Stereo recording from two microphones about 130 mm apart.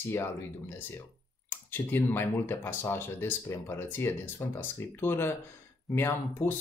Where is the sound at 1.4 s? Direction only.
15° left (ahead or behind).